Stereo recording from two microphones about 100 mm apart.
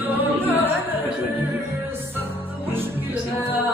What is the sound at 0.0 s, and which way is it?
Music, 20° right (ahead or behind).